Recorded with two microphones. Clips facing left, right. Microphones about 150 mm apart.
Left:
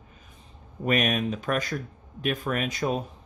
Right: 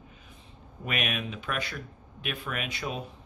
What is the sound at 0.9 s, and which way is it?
Speech, 40° left (ahead or behind).